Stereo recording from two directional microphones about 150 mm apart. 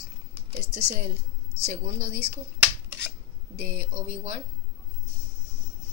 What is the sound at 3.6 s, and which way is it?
Speech, 60° right (ahead or behind).